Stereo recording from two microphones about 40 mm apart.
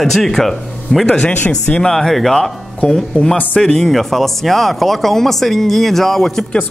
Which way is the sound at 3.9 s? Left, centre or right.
Centre.